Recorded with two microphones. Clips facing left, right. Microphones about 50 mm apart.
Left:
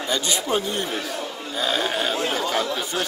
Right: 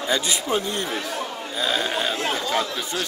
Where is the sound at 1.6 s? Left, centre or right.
Centre.